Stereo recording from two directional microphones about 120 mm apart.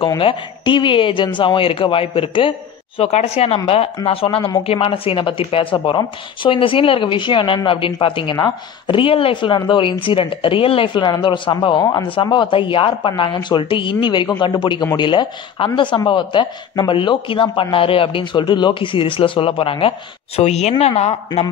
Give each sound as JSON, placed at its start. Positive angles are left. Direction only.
{"t": 0.2, "sound": "speech", "side_deg": 45}
{"t": 3.0, "sound": "speech", "side_deg": 60}
{"t": 20.3, "sound": "a woman's voice", "side_deg": 65}